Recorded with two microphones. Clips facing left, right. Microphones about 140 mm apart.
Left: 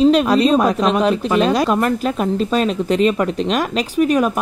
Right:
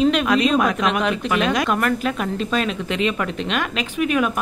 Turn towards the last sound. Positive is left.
turn(degrees=35)  # may be behind; listen again after turning